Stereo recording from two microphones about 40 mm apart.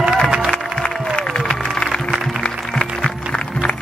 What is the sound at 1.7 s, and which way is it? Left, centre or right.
Music, left.